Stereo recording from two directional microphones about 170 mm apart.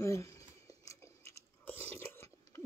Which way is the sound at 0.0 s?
15° left (ahead or behind).